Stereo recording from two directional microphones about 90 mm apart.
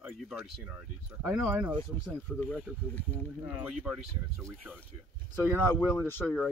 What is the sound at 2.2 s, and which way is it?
Speech, 15° left (ahead or behind).